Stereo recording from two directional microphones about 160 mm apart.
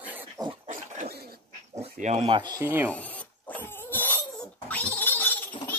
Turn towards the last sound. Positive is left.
turn(degrees=10)  # may be behind; listen again after turning